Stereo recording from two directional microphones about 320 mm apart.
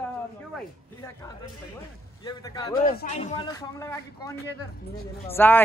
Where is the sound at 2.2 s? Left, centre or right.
Centre.